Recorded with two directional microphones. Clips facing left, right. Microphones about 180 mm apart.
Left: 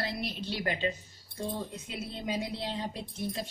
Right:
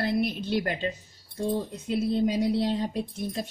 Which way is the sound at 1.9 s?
40° right (ahead or behind).